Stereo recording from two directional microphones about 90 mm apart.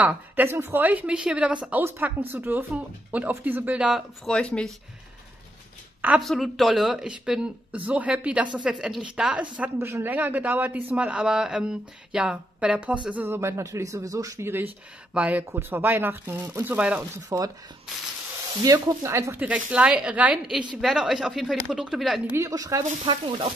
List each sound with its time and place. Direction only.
0.0 s a woman's voice: 20° right (ahead or behind)
4.3 s speech: 10° left (ahead or behind)
6.2 s speech: centre (ahead or behind)
9.8 s a man's voice: 25° right (ahead or behind)
15.1 s a man's voice: 15° right (ahead or behind)
16.7 s speech: 15° right (ahead or behind)
17.3 s speech: 35° right (ahead or behind)
18.6 s speech: 40° right (ahead or behind)
19.3 s speech: 15° right (ahead or behind)
22.4 s speech: 40° right (ahead or behind)
23.0 s speech: 65° right (ahead or behind)